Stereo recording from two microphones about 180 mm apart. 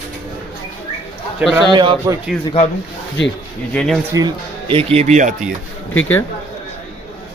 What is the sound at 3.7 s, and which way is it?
Speech, 5° left (ahead or behind).